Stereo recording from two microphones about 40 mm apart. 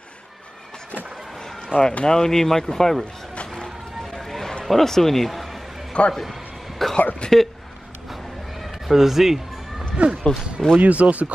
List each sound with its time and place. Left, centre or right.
1.7 s speech: left; by 3.1 s centre
4.2 s a sound: centre
4.6 s speech: centre
6.0 s a man's voice: left
6.8 s a sound: centre
7.2 s speech: left
8.8 s speech: centre
9.9 s speech: right
10.8 s speech: right